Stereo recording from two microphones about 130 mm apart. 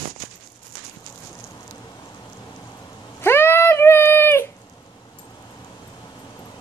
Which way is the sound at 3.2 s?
20° left (ahead or behind).